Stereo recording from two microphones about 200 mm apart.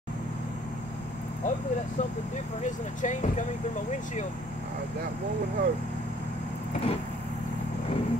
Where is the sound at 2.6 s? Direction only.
40° left (ahead or behind).